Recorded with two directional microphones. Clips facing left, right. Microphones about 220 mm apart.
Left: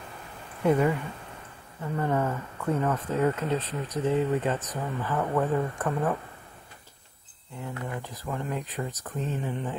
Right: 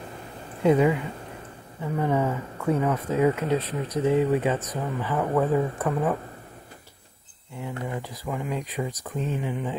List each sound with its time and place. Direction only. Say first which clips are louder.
0.7 s speech: right 3 dB; 15° right (ahead or behind)
8.0 s speech: right 2 dB; 10° right (ahead or behind)